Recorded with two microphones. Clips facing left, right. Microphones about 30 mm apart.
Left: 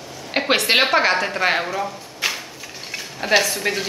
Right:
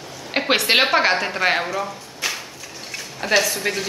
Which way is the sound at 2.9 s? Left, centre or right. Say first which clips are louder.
Left 1 dB; centre.